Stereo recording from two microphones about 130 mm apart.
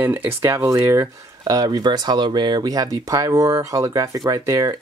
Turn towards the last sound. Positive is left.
turn(degrees=-25)  # may be behind; listen again after turning